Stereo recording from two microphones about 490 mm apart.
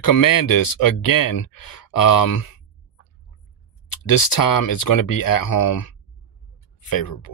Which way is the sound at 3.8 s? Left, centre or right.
Left.